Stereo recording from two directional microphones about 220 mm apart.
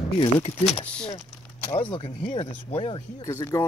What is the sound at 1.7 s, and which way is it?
Speech, 25° left (ahead or behind).